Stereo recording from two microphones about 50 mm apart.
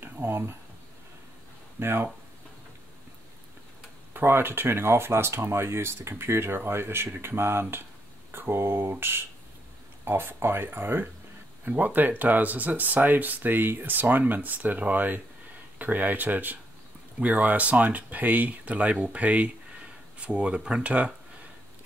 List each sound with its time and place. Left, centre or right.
0.0 s a sound: right
1.8 s speech: right
4.1 s speech: right
10.0 s speech: right